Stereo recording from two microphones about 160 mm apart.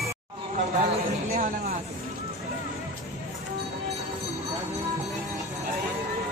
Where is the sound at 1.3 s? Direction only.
60° right (ahead or behind).